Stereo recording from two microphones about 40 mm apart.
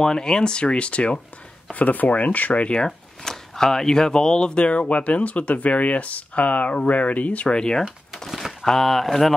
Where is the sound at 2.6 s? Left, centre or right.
Left.